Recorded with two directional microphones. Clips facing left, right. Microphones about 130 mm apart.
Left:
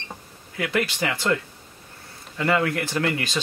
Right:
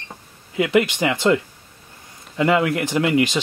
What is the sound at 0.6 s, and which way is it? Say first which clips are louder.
Speech: right 7 dB; 20° right (ahead or behind).